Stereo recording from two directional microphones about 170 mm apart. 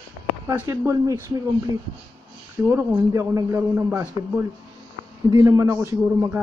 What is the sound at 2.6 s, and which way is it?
A man's voice, 15° right (ahead or behind).